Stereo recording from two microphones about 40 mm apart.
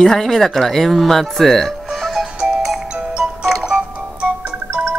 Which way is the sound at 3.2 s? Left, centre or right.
Centre.